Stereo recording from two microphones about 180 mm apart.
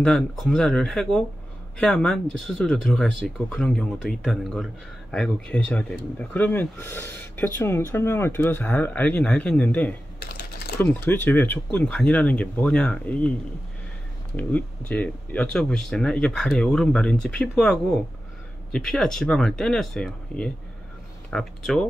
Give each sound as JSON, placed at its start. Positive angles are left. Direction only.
{"t": 0.0, "sound": "speech", "side_deg": 5}
{"t": 14.3, "sound": "speech", "side_deg": 5}